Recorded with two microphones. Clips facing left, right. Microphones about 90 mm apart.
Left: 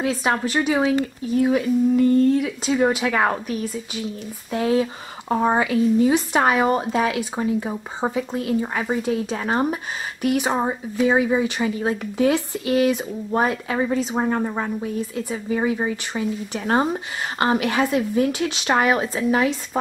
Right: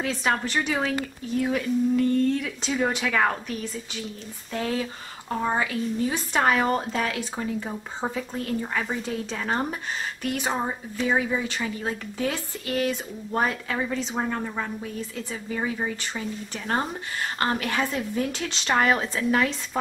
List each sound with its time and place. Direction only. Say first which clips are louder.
0.0 s speech: left 4 dB; 10° left (ahead or behind)
5.3 s speech: left 7 dB; 30° left (ahead or behind)
5.6 s speech: left 8 dB; 15° left (ahead or behind)
15.5 s speech: left 6 dB; 15° left (ahead or behind)